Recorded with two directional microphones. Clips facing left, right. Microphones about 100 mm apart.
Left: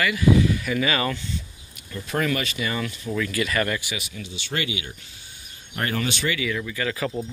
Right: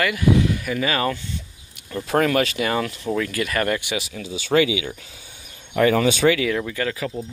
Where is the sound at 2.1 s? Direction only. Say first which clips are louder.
Right 6 dB; 80° right.